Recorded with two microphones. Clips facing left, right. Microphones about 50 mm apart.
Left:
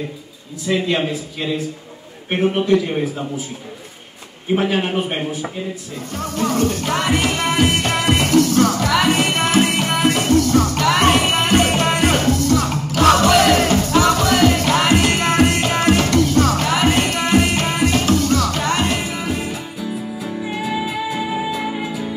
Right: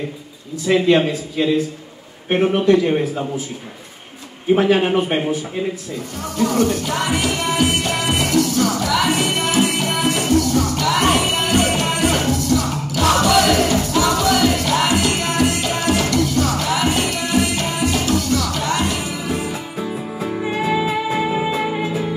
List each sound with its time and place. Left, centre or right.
0.7 s a man's voice: right
2.3 s a man's voice: right
4.8 s a man's voice: right
6.3 s music: left
19.5 s music: right
20.9 s music: right